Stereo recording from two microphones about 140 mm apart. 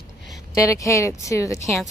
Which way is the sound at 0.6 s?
20° left (ahead or behind).